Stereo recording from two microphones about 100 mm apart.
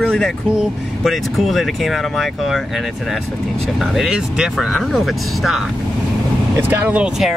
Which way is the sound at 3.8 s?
5° right (ahead or behind).